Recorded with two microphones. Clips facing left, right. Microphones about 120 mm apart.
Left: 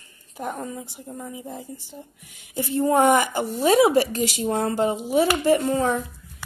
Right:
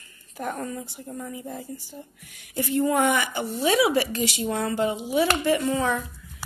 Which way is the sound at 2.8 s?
40° left (ahead or behind).